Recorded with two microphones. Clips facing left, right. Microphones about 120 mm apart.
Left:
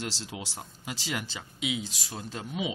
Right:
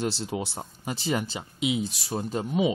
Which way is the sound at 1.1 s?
35° right (ahead or behind).